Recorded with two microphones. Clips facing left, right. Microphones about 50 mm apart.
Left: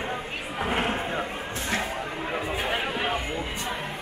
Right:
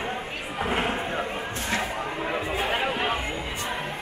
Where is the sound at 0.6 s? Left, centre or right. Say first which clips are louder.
Even; centre.